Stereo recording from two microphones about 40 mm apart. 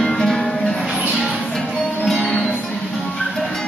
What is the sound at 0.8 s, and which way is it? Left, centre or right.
Music, centre.